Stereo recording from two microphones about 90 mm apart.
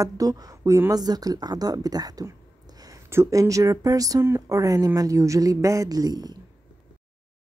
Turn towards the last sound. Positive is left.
turn(degrees=-45)  # may be behind; listen again after turning